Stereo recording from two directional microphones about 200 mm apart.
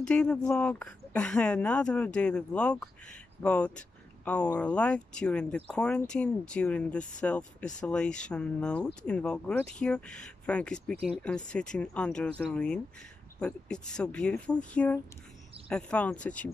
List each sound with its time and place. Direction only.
0.0 s speech: 5° left (ahead or behind)